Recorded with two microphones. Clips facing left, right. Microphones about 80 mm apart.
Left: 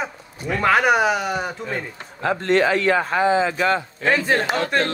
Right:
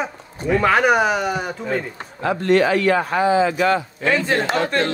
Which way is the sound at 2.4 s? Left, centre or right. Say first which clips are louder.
Right 2 dB; left.